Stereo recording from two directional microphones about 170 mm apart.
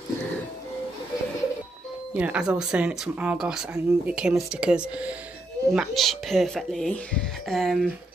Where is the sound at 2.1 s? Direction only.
5° right (ahead or behind).